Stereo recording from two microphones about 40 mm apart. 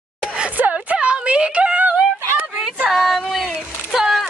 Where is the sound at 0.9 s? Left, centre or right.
Right.